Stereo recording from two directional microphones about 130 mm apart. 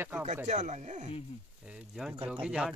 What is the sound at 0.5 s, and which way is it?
Speech, 65° right (ahead or behind).